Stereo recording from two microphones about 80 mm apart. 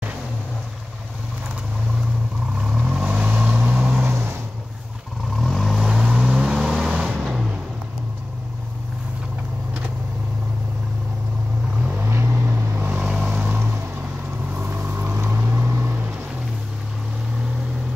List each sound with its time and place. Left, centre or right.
2.6 s vehicle: centre
4.1 s vehicle: right
5.4 s vehicle: centre
12.1 s vehicle: right
13.0 s vehicle: centre
14.5 s vehicle: right